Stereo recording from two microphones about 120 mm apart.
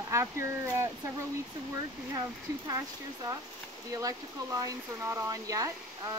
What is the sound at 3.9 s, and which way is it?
Speech, 30° right (ahead or behind).